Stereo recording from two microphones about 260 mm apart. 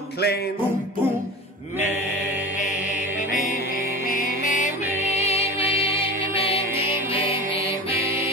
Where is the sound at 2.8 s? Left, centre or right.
Left.